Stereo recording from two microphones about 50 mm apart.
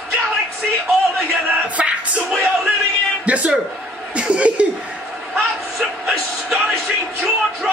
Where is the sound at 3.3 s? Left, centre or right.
Right.